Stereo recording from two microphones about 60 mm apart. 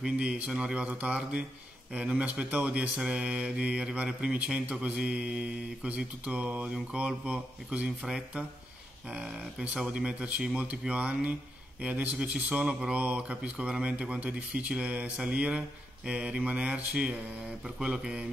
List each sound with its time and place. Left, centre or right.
0.0 s mantra: centre
2.0 s speech: centre
9.1 s mantra: centre
10.2 s speech: centre
17.9 s mantra: centre